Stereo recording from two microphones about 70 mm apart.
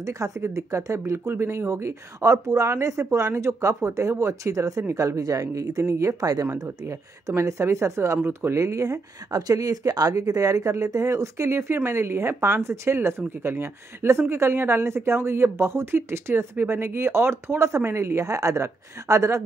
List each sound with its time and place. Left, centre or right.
0.0 s speech: right
8.6 s speech: right